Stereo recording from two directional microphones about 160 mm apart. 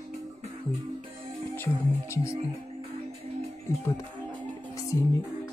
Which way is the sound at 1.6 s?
15° left (ahead or behind).